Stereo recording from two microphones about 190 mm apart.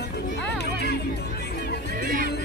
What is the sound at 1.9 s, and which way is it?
Music, 50° right (ahead or behind).